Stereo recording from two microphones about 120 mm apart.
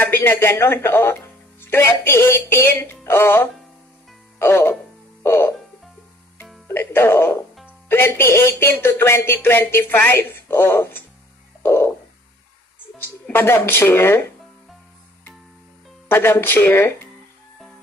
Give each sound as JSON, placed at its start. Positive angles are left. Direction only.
{"t": 0.0, "sound": "speech", "side_deg": 20}
{"t": 5.2, "sound": "music", "side_deg": 20}
{"t": 6.7, "sound": "speech", "side_deg": 20}
{"t": 11.6, "sound": "a sound", "side_deg": 20}
{"t": 13.0, "sound": "speech", "side_deg": 20}
{"t": 16.1, "sound": "speech", "side_deg": 20}